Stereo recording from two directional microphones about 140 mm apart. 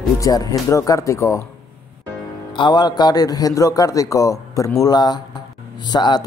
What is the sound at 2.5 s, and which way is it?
A man's voice, 30° left (ahead or behind).